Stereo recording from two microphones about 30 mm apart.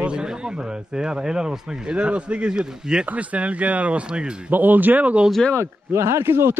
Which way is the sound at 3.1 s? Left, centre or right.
Right.